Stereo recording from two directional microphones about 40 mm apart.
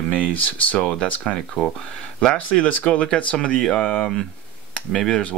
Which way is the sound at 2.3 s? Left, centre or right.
Left.